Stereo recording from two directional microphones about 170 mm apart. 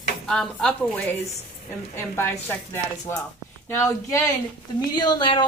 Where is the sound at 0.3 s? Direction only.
5° left (ahead or behind).